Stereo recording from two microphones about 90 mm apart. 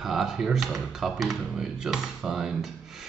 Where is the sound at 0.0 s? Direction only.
5° right (ahead or behind).